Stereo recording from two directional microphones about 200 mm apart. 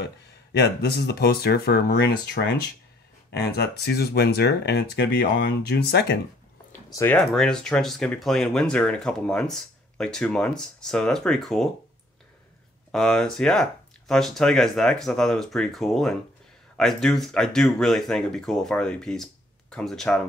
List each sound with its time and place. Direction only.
0.0 s speech: 55° left (ahead or behind)
6.9 s speech: 15° left (ahead or behind)
7.2 s speech: centre (ahead or behind)
12.9 s speech: centre (ahead or behind)